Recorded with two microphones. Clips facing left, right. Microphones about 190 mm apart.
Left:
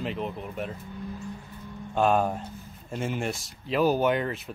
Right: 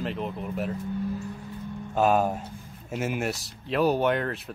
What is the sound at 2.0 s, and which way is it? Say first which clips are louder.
Speech: right 1 dB; 5° right (ahead or behind).